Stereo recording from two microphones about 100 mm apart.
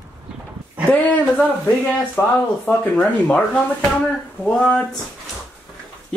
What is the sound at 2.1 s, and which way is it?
Speech, 15° left (ahead or behind).